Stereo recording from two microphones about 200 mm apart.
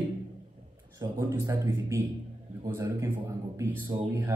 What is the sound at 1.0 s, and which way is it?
Speech, 10° right (ahead or behind).